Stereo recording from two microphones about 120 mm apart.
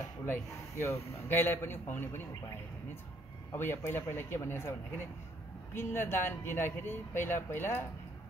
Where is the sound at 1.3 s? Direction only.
20° left (ahead or behind).